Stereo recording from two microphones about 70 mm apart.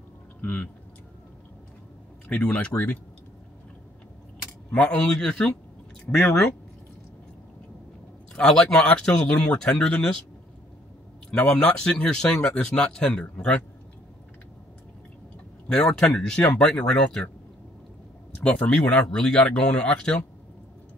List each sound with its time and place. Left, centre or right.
0.4 s speech: left
2.2 s speech: centre
4.6 s speech: centre
6.1 s speech: left
8.4 s speech: centre
11.3 s speech: centre
15.7 s speech: centre
18.4 s speech: centre